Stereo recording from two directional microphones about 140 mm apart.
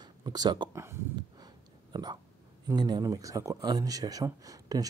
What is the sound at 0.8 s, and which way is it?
Speech, 20° right (ahead or behind).